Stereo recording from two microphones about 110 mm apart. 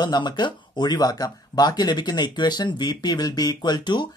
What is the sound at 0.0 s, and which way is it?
Speech, 40° left (ahead or behind).